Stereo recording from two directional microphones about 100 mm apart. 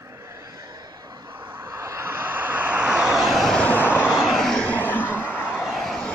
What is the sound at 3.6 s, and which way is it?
Vehicle, 20° left (ahead or behind).